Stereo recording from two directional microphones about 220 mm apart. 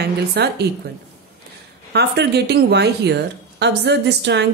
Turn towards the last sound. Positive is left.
turn(degrees=-50)  # may be behind; listen again after turning